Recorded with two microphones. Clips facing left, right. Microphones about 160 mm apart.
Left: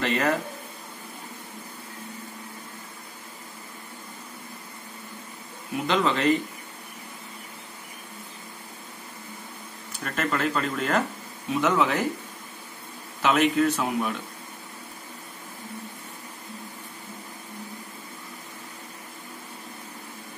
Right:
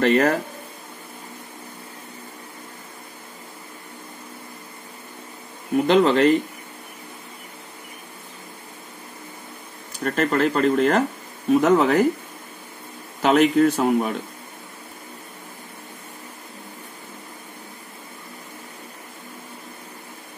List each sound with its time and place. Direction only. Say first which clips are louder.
0.0 s speech: right 7 dB; 50° right (ahead or behind)
5.9 s speech: right 6 dB; 40° right (ahead or behind)
9.9 s speech: right 7 dB; 40° right (ahead or behind)
13.2 s speech: right 5 dB; 50° right (ahead or behind)